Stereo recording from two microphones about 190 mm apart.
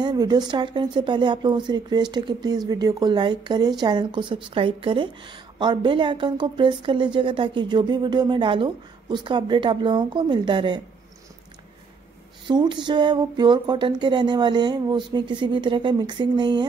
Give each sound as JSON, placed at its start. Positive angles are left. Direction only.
{"t": 0.0, "sound": "speech", "side_deg": -20}
{"t": 12.4, "sound": "speech", "side_deg": -25}